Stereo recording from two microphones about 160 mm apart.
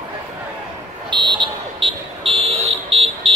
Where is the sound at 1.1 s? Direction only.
30° right (ahead or behind).